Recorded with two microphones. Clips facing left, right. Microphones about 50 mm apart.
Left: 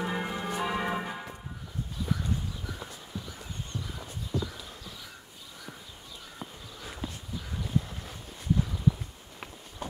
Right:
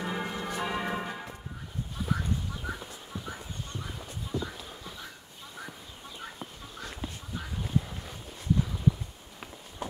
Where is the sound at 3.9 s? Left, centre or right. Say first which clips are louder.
Left 1 dB; right.